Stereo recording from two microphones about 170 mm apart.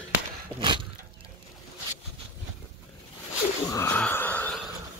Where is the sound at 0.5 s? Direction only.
30° right (ahead or behind).